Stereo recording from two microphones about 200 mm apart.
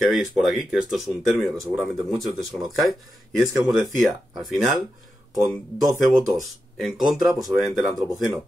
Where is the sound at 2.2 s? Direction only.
Centre (ahead or behind).